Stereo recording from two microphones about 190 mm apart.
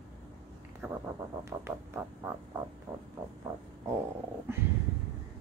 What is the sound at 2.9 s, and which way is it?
Speech, 15° right (ahead or behind).